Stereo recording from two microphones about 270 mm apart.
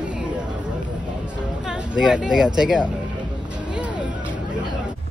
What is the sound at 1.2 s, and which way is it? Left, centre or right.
Music, centre.